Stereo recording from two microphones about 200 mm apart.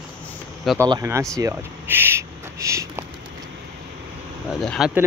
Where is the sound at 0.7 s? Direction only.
15° right (ahead or behind).